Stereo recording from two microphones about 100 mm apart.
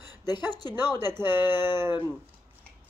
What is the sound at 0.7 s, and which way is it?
A woman's voice, 25° right (ahead or behind).